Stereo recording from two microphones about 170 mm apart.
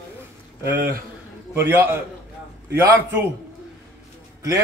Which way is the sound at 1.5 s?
15° right (ahead or behind).